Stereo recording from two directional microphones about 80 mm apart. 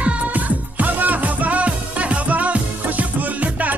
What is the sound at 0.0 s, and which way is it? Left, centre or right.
Music, centre.